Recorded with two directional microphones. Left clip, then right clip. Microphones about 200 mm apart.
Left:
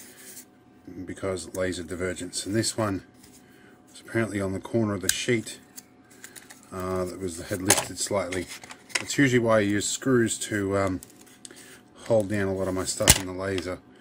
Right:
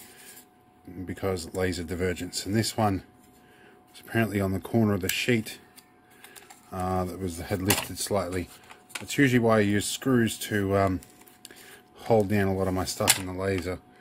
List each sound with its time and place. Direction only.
1.0 s speech: 35° right (ahead or behind)
4.1 s speech: 35° right (ahead or behind)
6.7 s speech: 35° right (ahead or behind)
12.1 s speech: 35° right (ahead or behind)